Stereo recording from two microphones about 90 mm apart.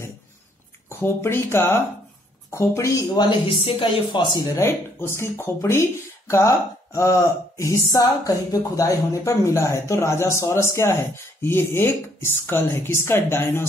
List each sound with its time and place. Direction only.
0.8 s speech: 25° left (ahead or behind)
3.2 s speech: 70° left (ahead or behind); by 13.7 s 25° left (ahead or behind)